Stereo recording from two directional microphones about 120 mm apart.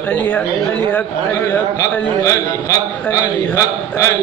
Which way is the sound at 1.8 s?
25° left (ahead or behind).